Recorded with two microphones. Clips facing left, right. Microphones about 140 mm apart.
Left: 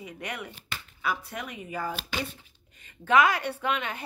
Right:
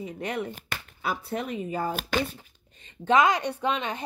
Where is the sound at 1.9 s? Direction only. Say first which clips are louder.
Right 5 dB; 50° right (ahead or behind).